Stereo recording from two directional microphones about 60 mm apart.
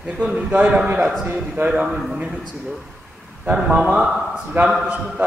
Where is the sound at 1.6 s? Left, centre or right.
Centre.